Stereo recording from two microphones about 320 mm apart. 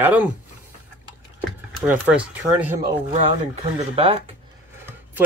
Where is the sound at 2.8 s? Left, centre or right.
Right.